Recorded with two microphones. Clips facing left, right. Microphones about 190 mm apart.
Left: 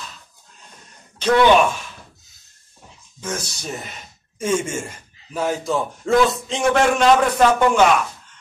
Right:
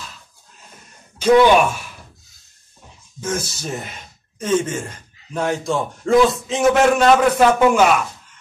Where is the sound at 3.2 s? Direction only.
5° right (ahead or behind).